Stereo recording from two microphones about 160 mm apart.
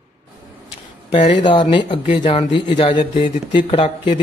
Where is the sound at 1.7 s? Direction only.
30° left (ahead or behind).